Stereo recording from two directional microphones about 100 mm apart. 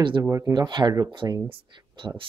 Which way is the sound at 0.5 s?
45° right (ahead or behind).